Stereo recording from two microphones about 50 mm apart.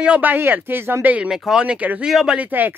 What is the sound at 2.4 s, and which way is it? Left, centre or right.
Speech, right.